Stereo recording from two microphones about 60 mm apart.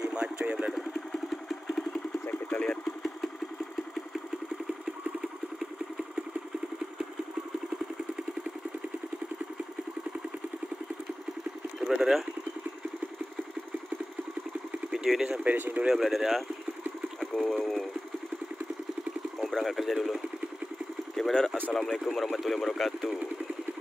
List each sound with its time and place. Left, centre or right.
0.0 s a sound: centre
0.7 s engine: centre
2.5 s engine: centre
11.8 s vehicle: centre
15.1 s speech: centre
15.4 s speech: right
15.9 s speech: centre
17.2 s sewing machine: centre
19.4 s speech: centre
21.2 s a sound: centre
21.7 s speech: centre